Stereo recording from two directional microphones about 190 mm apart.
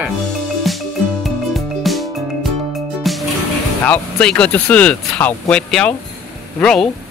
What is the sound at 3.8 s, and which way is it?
Speech, 10° left (ahead or behind).